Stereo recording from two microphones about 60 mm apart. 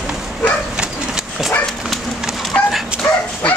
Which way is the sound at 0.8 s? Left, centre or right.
Centre.